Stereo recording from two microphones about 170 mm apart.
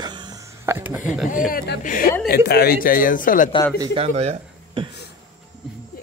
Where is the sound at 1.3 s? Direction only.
55° left (ahead or behind).